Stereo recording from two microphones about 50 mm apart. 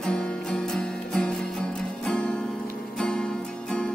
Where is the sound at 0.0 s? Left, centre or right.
Centre.